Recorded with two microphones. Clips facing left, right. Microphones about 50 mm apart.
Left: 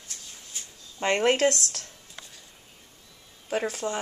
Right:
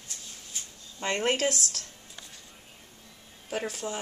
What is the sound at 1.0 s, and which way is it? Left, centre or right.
Speech, left.